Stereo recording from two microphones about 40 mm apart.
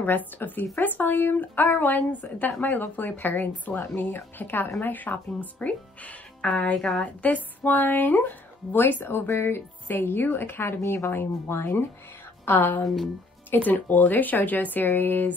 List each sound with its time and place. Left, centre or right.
0.0 s a woman's voice: left
6.8 s a woman's voice: centre
7.2 s a woman's voice: left
8.7 s a woman's voice: left
12.5 s a woman's voice: left